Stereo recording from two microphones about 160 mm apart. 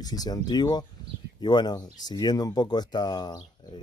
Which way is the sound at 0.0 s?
25° left (ahead or behind).